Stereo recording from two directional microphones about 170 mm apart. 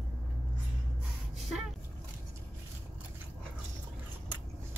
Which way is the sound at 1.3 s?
Centre (ahead or behind).